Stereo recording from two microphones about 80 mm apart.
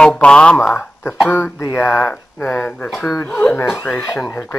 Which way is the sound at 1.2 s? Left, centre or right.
Left.